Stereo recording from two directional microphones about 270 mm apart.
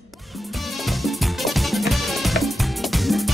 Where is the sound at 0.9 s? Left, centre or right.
Centre.